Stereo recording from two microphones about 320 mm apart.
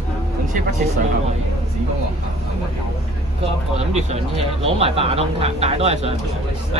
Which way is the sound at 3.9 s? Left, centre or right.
Right.